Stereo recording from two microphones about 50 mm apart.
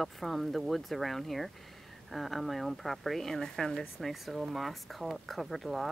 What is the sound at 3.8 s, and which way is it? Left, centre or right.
Speech, centre.